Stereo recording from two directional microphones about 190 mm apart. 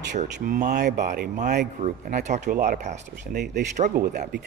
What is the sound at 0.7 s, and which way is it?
Speech, 60° right (ahead or behind).